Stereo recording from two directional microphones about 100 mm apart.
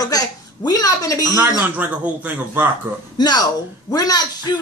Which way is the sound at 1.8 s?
20° right (ahead or behind).